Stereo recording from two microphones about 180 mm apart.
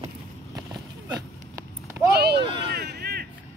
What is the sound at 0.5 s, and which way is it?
Horse, 20° right (ahead or behind).